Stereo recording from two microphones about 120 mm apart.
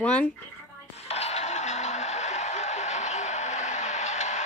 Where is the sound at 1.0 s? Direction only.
60° left (ahead or behind).